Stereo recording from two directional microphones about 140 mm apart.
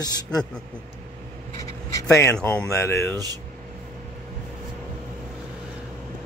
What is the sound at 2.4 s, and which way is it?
Speech, 10° left (ahead or behind).